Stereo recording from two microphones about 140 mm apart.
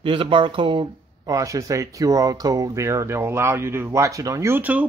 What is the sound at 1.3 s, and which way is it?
Speech, 25° right (ahead or behind).